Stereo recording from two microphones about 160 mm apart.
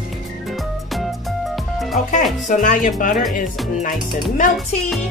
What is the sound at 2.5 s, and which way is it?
Speech, 55° left (ahead or behind).